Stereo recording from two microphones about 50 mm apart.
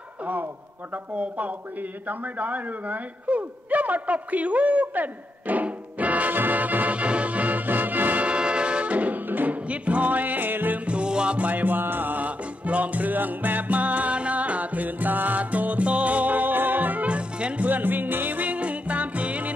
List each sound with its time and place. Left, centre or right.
0.2 s a man's voice: right
0.9 s a sound: right
10.9 s music: centre
11.4 s music: right
17.6 s music: right